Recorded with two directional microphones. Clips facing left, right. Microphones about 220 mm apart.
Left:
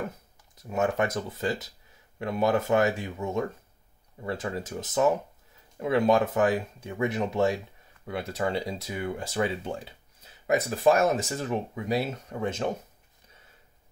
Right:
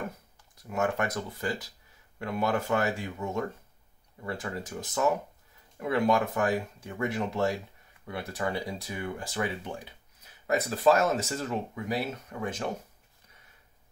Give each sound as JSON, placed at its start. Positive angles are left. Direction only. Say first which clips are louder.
{"t": 0.6, "sound": "speech", "louder": "left 3 dB", "side_deg": 20}